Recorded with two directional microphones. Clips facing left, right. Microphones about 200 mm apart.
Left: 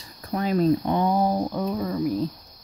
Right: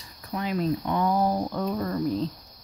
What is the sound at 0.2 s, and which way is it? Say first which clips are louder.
Speech: left 5 dB; 40° left (ahead or behind).